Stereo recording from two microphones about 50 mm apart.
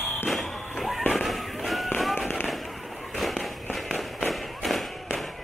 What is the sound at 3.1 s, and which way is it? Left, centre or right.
Tap, centre.